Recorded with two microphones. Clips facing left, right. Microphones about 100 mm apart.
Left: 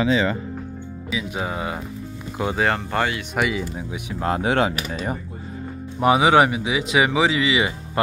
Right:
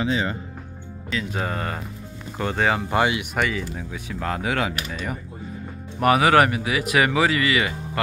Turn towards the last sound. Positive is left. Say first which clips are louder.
# left 2 dB
turn(degrees=20)  # may be behind; listen again after turning